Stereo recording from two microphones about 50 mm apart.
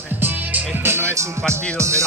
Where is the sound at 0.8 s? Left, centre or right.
Right.